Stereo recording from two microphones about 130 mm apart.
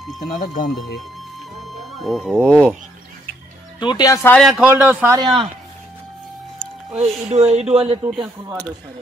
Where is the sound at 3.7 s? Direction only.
35° left (ahead or behind).